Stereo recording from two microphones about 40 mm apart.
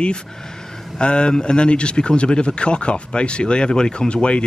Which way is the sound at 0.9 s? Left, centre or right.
Left.